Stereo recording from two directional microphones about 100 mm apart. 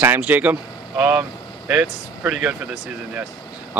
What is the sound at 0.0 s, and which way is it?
Speech, 20° right (ahead or behind).